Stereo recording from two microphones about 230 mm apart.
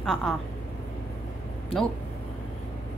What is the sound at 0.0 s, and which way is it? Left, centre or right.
Speech, centre.